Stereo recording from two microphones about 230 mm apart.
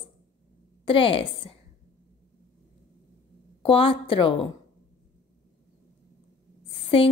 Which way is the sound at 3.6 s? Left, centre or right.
Left.